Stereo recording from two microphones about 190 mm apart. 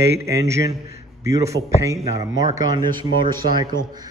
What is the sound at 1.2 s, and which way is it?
Speech, 15° right (ahead or behind).